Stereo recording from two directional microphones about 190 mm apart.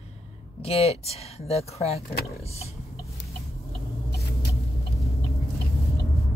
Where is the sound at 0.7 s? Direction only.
30° left (ahead or behind).